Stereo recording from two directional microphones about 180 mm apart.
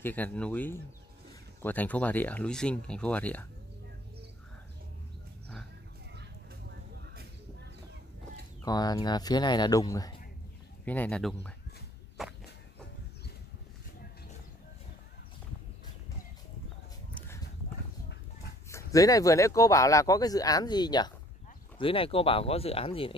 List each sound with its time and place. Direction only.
0.0 s speech: 10° left (ahead or behind)
6.7 s vehicle: 70° right (ahead or behind)
8.6 s speech: 20° left (ahead or behind)
10.9 s speech: 5° left (ahead or behind)
12.2 s walk: centre (ahead or behind)
18.7 s speech: 15° left (ahead or behind)